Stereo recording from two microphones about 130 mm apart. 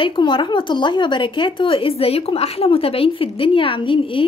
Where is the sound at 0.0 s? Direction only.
40° left (ahead or behind).